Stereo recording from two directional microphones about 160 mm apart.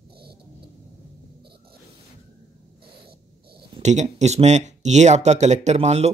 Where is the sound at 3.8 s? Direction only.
45° right (ahead or behind).